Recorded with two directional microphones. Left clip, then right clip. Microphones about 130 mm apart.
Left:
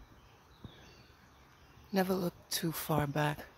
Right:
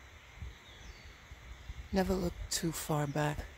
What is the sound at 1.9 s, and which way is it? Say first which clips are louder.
Speech: left 1 dB; centre (ahead or behind).